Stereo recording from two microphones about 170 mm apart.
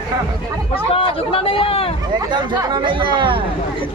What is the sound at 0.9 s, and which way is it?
Speech, 35° left (ahead or behind).